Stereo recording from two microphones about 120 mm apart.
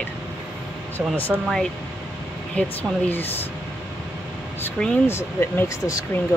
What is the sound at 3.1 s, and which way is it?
Speech, 15° left (ahead or behind).